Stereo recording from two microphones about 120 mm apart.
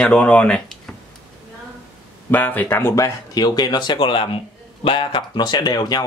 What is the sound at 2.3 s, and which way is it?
Speech, 15° left (ahead or behind).